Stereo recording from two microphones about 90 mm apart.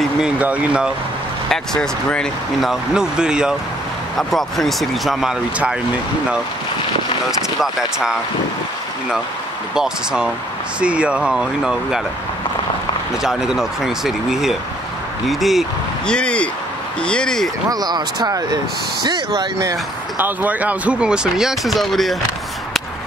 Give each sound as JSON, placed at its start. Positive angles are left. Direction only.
{"t": 0.2, "sound": "speech", "side_deg": -15}
{"t": 1.5, "sound": "speech", "side_deg": 5}
{"t": 2.6, "sound": "speech", "side_deg": -5}
{"t": 4.2, "sound": "speech", "side_deg": 0}
{"t": 7.6, "sound": "speech", "side_deg": -5}
{"t": 9.8, "sound": "speech", "side_deg": -10}
{"t": 13.2, "sound": "speech", "side_deg": -5}
{"t": 16.1, "sound": "speech", "side_deg": 10}
{"t": 17.6, "sound": "speech", "side_deg": -50}
{"t": 20.2, "sound": "speech", "side_deg": -20}